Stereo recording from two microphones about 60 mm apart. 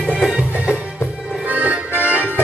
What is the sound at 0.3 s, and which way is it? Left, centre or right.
Music, centre.